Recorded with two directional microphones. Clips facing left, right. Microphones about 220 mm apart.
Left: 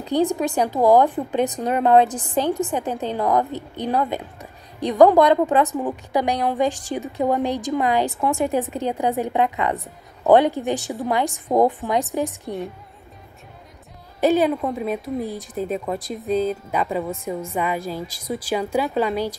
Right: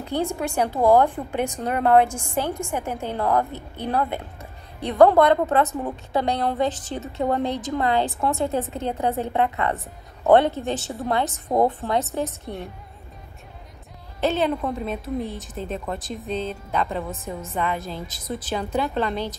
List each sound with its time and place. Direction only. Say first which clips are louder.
0.0 s a woman's voice: left 5 dB; 15° left (ahead or behind)
11.5 s music: left 3 dB; centre (ahead or behind)
11.9 s a woman's voice: left 2 dB; 15° left (ahead or behind)
12.4 s music: left 4 dB; centre (ahead or behind)
14.2 s a woman's voice: left 4 dB; 10° left (ahead or behind)